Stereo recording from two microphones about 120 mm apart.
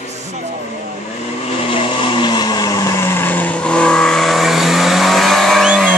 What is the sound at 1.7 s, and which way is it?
Vehicle, 40° left (ahead or behind).